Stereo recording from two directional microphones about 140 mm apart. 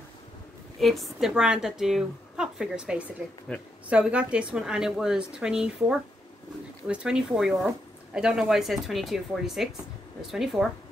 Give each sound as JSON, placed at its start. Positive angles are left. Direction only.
{"t": 0.7, "sound": "speech", "side_deg": 0}